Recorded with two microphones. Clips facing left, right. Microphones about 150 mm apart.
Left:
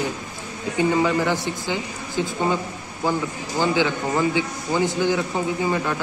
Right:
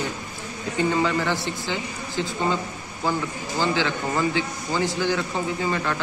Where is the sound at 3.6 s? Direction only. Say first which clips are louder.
Left 3 dB; 15° left (ahead or behind).